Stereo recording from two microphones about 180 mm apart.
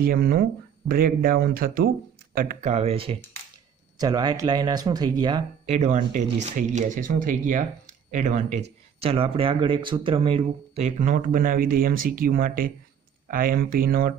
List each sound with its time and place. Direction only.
0.0 s speech: 55° right (ahead or behind); by 3.2 s 30° right (ahead or behind)
4.0 s speech: 20° right (ahead or behind)
5.7 s speech: 40° right (ahead or behind)